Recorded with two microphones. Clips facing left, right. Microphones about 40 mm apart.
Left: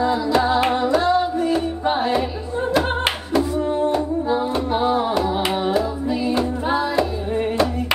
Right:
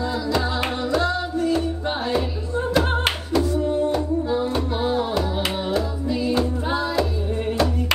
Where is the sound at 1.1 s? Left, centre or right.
Centre.